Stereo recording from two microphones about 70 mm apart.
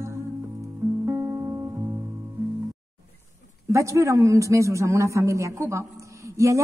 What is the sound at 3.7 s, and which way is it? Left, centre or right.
A man's voice, right.